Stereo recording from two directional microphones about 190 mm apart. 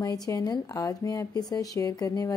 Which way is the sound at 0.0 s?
20° left (ahead or behind).